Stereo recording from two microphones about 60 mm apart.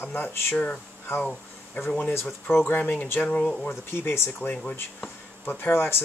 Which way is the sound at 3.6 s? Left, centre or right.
Left.